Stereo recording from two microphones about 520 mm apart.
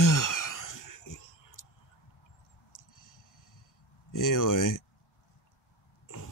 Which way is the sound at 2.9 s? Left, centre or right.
Left.